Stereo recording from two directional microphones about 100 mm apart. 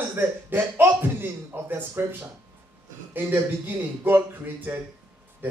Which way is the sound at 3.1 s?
20° right (ahead or behind).